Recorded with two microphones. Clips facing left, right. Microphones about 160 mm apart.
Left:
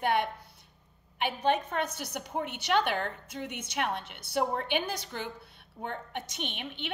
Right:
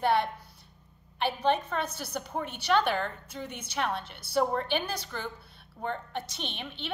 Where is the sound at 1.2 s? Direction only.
15° left (ahead or behind).